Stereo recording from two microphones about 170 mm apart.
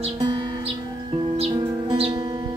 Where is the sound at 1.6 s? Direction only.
20° right (ahead or behind).